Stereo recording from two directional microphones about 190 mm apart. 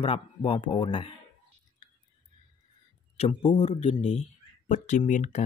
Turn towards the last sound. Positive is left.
turn(degrees=40)  # may be behind; listen again after turning